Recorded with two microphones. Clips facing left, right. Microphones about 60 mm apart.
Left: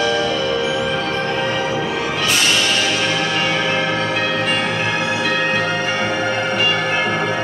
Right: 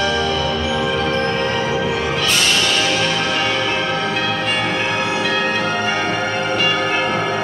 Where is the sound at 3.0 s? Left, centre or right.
Centre.